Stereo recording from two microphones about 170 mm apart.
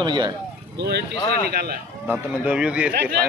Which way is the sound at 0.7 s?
75° right (ahead or behind).